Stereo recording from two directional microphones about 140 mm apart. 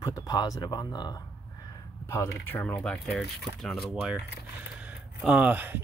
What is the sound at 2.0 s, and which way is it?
Speech, 20° left (ahead or behind).